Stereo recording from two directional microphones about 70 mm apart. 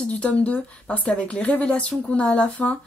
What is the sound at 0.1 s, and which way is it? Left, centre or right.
A woman's voice, centre.